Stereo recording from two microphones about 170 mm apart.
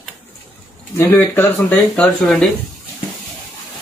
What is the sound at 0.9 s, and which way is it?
Speech, 15° left (ahead or behind).